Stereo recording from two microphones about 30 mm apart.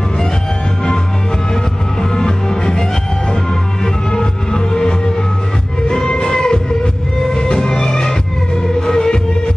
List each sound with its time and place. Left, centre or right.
1.5 s music: left